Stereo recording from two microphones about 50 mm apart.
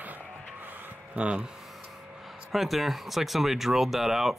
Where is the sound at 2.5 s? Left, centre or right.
Centre.